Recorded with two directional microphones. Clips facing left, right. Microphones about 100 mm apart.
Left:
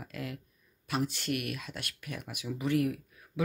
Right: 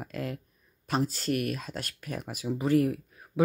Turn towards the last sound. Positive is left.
turn(degrees=-35)  # may be behind; listen again after turning